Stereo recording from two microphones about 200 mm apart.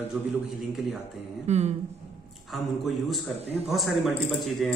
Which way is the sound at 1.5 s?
35° right (ahead or behind).